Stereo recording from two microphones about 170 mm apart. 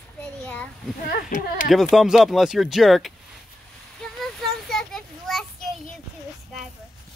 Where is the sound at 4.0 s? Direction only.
Centre (ahead or behind).